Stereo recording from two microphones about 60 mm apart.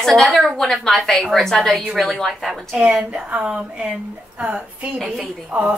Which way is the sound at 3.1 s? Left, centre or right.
Centre.